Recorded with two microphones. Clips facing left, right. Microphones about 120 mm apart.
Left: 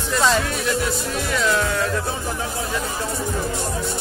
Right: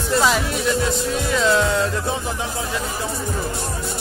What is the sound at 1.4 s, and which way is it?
Music, 25° right (ahead or behind).